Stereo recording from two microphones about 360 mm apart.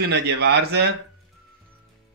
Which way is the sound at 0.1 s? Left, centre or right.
Right.